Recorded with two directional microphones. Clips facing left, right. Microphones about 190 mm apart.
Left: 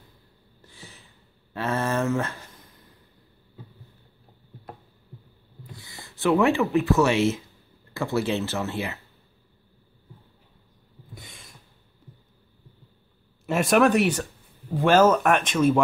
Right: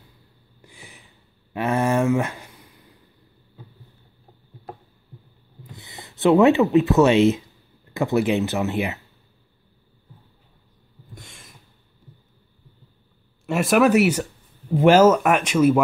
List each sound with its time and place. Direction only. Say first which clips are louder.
0.6 s a sound: right 1 dB; 15° right (ahead or behind)
5.6 s speech: right 3 dB; 20° right (ahead or behind)
11.1 s snort: right 1 dB; centre (ahead or behind)
13.5 s speech: right 2 dB; centre (ahead or behind)